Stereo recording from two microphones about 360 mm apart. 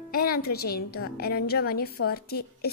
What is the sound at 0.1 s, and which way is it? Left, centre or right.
A woman's voice, left.